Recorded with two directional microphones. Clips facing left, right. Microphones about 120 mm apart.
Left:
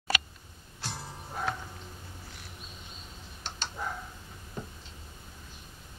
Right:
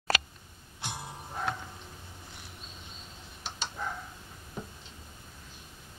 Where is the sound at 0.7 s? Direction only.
15° right (ahead or behind).